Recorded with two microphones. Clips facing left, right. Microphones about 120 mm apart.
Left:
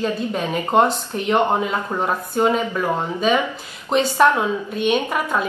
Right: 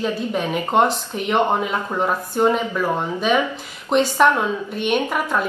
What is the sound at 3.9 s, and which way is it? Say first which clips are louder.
Speech: even; 10° left (ahead or behind).